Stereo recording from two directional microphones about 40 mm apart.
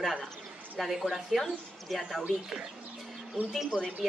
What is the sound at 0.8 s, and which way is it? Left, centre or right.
Speech, centre.